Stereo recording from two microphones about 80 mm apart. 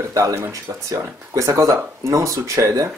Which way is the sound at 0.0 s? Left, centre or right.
Right.